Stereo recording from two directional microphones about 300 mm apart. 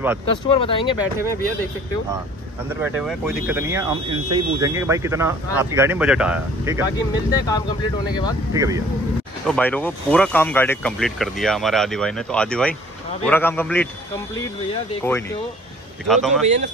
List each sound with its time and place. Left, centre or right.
0.5 s speech: centre
2.8 s speech: centre
7.0 s speech: centre
8.5 s speech: centre
9.5 s speech: centre
16.1 s speech: centre